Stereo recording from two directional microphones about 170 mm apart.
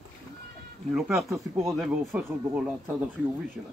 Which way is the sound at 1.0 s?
Centre (ahead or behind).